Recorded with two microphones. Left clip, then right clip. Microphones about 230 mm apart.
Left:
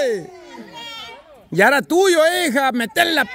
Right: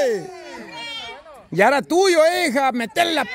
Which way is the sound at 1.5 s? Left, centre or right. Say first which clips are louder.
Left 2 dB; centre.